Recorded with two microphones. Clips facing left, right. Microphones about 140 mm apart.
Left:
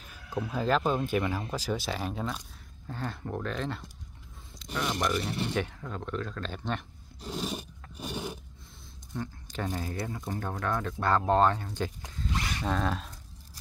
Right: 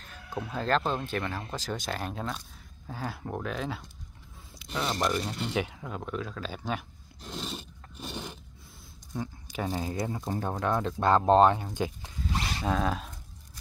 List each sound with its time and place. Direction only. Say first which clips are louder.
0.0 s speech: left 2 dB; 5° left (ahead or behind)
7.2 s scrape: left 4 dB; 10° left (ahead or behind)
9.1 s speech: right 1 dB; 10° right (ahead or behind)
12.3 s a sound: right 1 dB; 25° right (ahead or behind)
12.6 s speech: right 2 dB; 5° right (ahead or behind)